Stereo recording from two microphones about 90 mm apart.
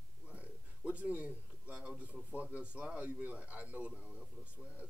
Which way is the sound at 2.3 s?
15° right (ahead or behind).